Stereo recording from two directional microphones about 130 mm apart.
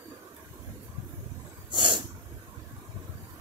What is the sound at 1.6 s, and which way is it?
Snort, 35° right (ahead or behind).